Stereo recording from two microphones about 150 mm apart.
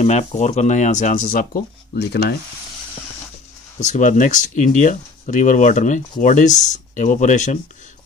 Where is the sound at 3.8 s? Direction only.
55° left (ahead or behind).